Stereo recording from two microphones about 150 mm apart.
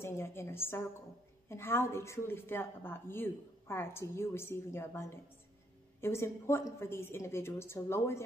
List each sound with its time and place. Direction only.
0.0 s speech: 15° left (ahead or behind)